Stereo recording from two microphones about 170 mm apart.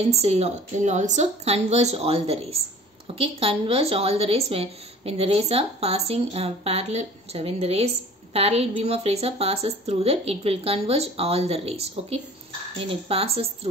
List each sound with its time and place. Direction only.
0.0 s a woman's voice: 40° right (ahead or behind)